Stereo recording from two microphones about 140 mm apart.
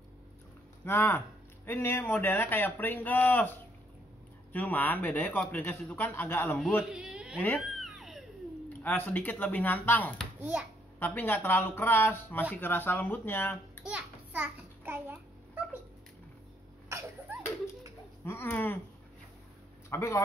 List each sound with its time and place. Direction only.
0.8 s speech: 15° left (ahead or behind)
6.8 s a sound: 5° right (ahead or behind)
7.3 s a sound: 5° left (ahead or behind)
8.8 s speech: 15° left (ahead or behind)
10.4 s a child's voice: 10° right (ahead or behind)
11.0 s speech: 15° left (ahead or behind)
13.8 s babbling: 10° right (ahead or behind)
18.2 s speech: 15° left (ahead or behind)
19.9 s speech: 20° left (ahead or behind)